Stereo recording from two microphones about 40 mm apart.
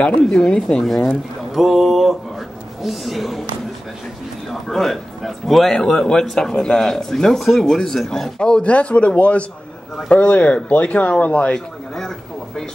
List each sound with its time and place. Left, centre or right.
0.3 s speech: centre
0.7 s speech: centre
1.5 s a man's voice: centre
4.6 s a man's voice: centre
5.7 s speech: centre
8.4 s speech: left
8.6 s speech: left